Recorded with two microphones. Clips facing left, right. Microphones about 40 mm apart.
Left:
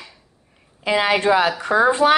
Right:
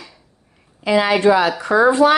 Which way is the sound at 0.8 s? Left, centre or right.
Left.